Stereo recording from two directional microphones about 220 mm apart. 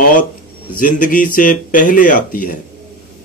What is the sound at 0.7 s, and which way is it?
Speech, 40° left (ahead or behind).